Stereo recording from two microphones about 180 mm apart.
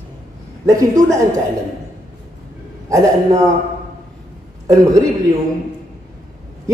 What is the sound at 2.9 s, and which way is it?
Speech, 15° right (ahead or behind).